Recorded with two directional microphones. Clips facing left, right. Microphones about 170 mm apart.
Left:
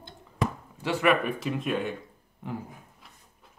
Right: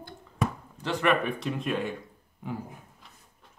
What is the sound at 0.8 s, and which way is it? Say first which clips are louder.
Speech: left 1 dB; 5° left (ahead or behind).